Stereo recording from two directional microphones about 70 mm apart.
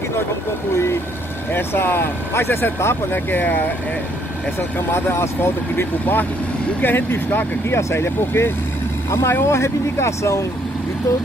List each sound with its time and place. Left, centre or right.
1.5 s speech: left
4.6 s speech: left